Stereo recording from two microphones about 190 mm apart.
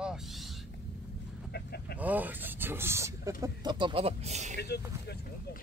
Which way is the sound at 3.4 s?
25° right (ahead or behind).